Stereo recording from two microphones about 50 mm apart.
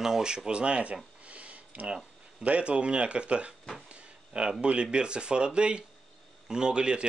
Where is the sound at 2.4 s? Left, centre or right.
Right.